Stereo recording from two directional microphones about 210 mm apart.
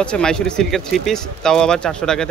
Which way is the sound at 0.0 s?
5° left (ahead or behind).